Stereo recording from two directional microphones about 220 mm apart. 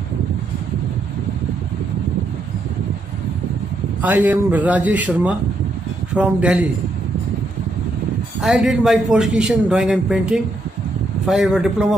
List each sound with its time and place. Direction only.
4.0 s a man's voice: 5° right (ahead or behind)
8.4 s a man's voice: centre (ahead or behind)